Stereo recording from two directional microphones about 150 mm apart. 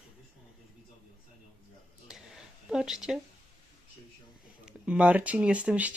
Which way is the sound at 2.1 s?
5° right (ahead or behind).